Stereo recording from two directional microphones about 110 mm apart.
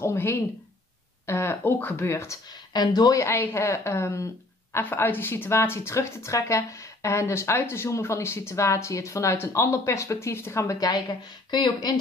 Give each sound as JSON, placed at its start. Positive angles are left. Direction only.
{"t": 0.0, "sound": "a woman's voice", "side_deg": 25}
{"t": 2.7, "sound": "a woman's voice", "side_deg": 40}